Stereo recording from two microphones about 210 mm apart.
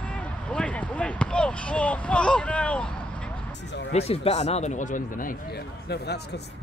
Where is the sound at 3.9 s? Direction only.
30° left (ahead or behind).